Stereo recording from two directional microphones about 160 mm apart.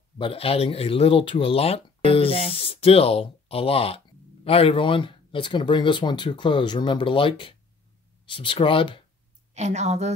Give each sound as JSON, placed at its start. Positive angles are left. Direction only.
{"t": 0.2, "sound": "speech", "side_deg": 35}
{"t": 9.5, "sound": "a woman's voice", "side_deg": -45}